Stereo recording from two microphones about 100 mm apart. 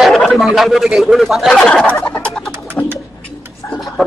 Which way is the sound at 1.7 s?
10° left (ahead or behind).